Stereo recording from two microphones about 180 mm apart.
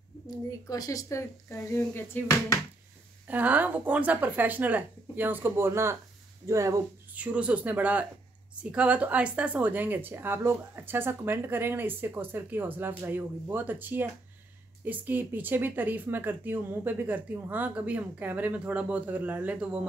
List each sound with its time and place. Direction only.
0.7 s speech: 20° left (ahead or behind)
3.3 s speech: 10° right (ahead or behind)